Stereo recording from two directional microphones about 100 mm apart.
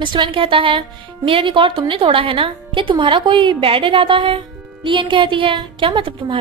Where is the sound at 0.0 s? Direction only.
50° right (ahead or behind).